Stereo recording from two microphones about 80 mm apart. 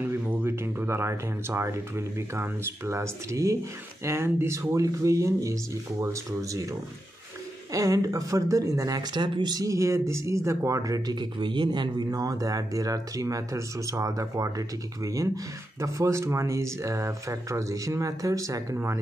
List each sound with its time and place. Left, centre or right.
0.0 s speech: right
7.7 s speech: right
9.1 s speech: right
9.7 s speech: right
12.1 s speech: right